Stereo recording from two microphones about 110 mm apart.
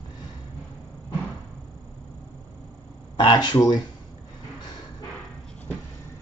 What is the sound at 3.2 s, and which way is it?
Speech, 45° left (ahead or behind).